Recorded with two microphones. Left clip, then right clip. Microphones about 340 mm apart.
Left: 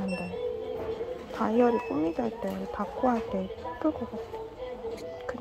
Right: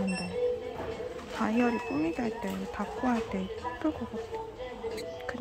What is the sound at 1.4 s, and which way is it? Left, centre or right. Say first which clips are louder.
Speech: left 5 dB; centre.